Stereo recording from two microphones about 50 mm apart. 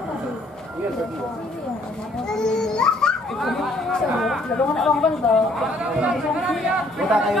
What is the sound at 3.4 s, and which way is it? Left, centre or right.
Speech, centre.